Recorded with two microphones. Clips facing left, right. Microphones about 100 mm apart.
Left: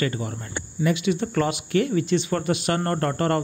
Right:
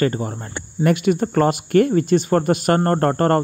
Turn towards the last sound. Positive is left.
turn(degrees=-45)  # may be behind; listen again after turning